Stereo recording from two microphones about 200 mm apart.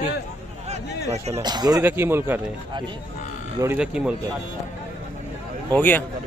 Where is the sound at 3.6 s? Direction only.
5° right (ahead or behind).